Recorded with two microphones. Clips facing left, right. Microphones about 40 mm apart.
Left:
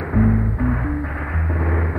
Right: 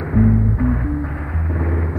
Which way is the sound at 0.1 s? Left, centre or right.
Centre.